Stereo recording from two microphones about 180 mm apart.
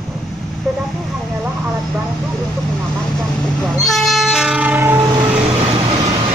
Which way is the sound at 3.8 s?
Centre (ahead or behind).